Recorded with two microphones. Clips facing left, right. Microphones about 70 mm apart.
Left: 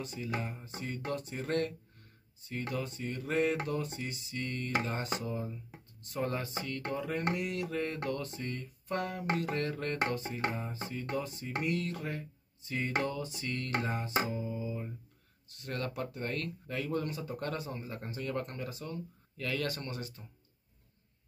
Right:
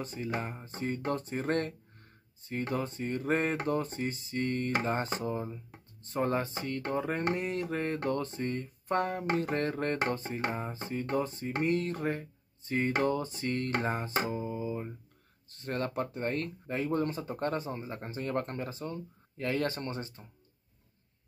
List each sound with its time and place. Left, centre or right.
0.0 s speech: right
14.3 s a sound: right
15.5 s speech: right